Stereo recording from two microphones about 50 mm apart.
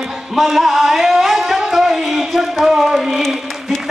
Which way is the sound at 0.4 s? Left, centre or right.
Centre.